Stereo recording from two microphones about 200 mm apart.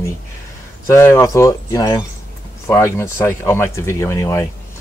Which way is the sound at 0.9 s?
15° left (ahead or behind).